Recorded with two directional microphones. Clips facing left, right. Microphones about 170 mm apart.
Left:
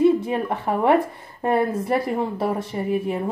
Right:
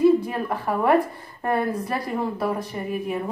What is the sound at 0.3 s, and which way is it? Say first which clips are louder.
A woman's voice: left 3 dB; 25° left (ahead or behind).